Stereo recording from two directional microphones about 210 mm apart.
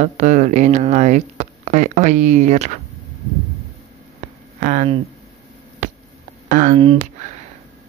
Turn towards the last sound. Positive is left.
turn(degrees=-40)  # may be behind; listen again after turning